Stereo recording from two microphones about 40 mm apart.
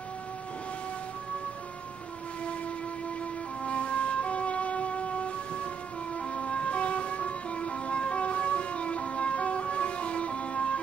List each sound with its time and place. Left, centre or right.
3.6 s vehicle: left
6.1 s music: left